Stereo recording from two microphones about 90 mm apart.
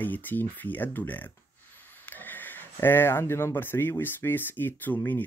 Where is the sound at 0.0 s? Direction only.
20° left (ahead or behind).